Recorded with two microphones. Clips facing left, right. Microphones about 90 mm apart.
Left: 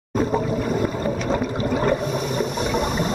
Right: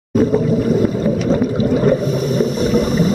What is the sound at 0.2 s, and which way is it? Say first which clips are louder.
Whale vocalization: right 7 dB; centre (ahead or behind).